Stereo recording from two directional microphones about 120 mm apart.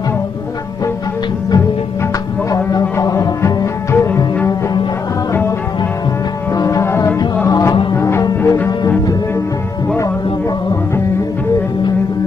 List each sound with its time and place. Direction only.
2.5 s music: 30° left (ahead or behind)
6.5 s music: 30° left (ahead or behind)